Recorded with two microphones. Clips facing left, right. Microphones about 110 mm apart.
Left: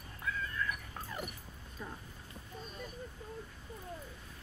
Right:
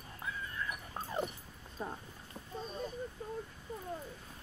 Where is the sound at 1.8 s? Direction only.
30° right (ahead or behind).